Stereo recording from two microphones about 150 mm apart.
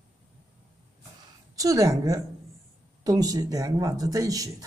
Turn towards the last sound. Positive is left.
turn(degrees=-25)  # may be behind; listen again after turning